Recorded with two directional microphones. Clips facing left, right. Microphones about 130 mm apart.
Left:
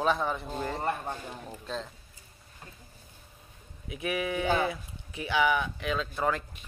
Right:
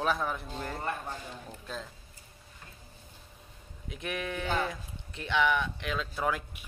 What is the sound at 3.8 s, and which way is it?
A man's voice, 5° left (ahead or behind).